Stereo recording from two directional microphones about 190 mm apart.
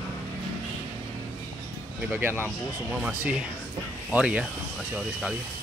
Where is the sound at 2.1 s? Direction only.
10° right (ahead or behind).